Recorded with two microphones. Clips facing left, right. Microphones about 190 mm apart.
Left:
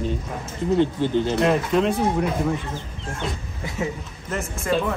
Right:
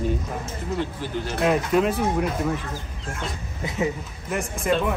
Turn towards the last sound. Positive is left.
turn(degrees=0)  # may be behind; listen again after turning